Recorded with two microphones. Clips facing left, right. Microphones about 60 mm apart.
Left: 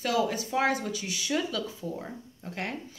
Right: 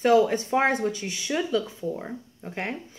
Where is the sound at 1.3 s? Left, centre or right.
Centre.